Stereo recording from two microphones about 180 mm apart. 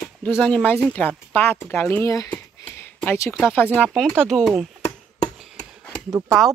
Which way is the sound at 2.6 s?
10° left (ahead or behind).